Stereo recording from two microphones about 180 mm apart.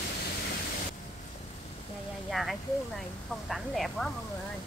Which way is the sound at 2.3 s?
Centre (ahead or behind).